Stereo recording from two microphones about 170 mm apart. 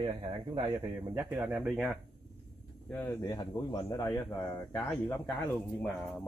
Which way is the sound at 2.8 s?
10° left (ahead or behind).